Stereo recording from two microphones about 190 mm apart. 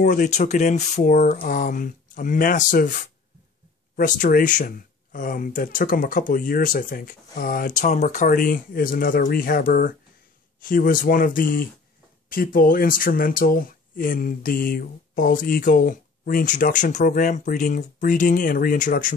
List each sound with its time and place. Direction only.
0.0 s speech: 45° left (ahead or behind)